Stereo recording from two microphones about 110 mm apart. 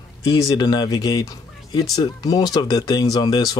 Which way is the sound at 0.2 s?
35° left (ahead or behind).